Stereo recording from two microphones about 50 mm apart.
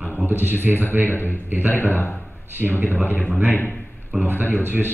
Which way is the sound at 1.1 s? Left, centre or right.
Left.